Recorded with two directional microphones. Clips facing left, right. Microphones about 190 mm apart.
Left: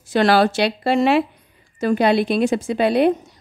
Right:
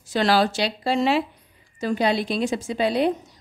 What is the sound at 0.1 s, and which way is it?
A woman's voice, 60° left (ahead or behind).